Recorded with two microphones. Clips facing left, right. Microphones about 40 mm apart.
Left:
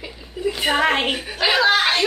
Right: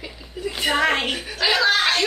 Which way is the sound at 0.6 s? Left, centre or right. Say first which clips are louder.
Left 1 dB; centre.